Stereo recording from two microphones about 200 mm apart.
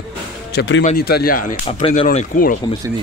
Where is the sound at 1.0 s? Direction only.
50° left (ahead or behind).